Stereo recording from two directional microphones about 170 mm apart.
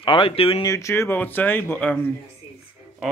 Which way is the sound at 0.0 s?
30° left (ahead or behind).